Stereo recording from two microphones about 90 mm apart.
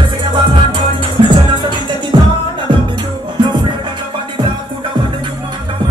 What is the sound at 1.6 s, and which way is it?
Music, 55° right (ahead or behind).